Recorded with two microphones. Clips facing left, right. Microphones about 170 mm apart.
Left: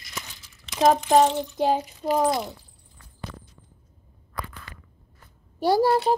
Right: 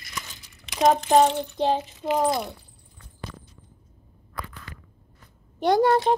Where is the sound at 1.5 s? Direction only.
10° left (ahead or behind).